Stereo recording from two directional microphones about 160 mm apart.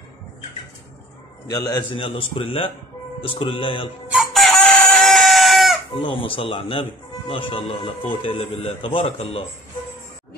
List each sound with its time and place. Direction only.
2.0 s speech: 35° left (ahead or behind)
4.1 s chicken: centre (ahead or behind)
5.9 s speech: 35° left (ahead or behind)